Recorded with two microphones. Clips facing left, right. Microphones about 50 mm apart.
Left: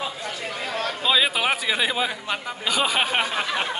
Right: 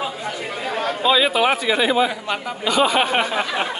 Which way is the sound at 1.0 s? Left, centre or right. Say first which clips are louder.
Right 5 dB; centre.